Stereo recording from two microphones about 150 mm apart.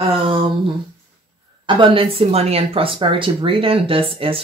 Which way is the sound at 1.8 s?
40° right (ahead or behind).